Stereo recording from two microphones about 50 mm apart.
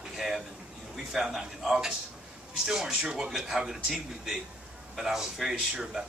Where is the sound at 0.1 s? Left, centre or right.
Centre.